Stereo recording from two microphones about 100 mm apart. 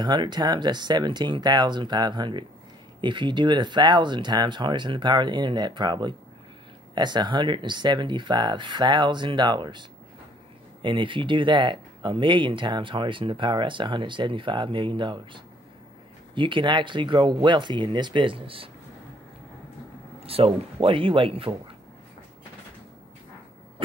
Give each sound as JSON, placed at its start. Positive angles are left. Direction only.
{"t": 0.0, "sound": "speech", "side_deg": -50}
{"t": 20.2, "sound": "speech", "side_deg": -75}